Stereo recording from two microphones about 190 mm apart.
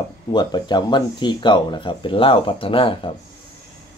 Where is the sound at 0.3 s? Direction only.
20° left (ahead or behind).